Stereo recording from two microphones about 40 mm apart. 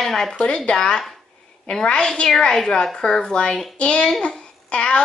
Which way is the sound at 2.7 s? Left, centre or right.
Centre.